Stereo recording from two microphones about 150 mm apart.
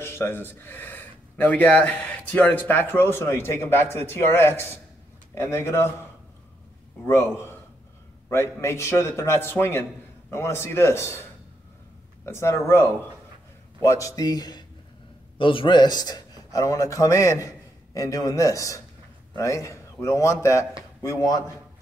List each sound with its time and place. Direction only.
0.0 s speech: 15° left (ahead or behind)
7.1 s speech: 15° left (ahead or behind)
12.3 s a man's voice: 15° left (ahead or behind)